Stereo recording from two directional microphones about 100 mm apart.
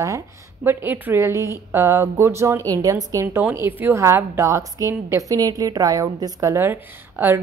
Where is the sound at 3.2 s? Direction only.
20° right (ahead or behind).